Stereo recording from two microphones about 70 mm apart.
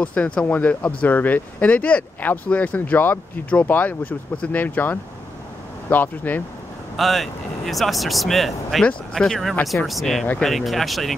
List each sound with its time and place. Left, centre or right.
0.0 s speech: centre
7.0 s speech: centre